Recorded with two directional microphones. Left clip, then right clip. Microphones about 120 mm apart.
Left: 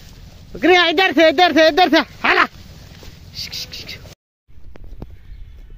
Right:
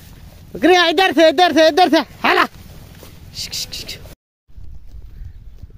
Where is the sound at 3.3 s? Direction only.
45° right (ahead or behind).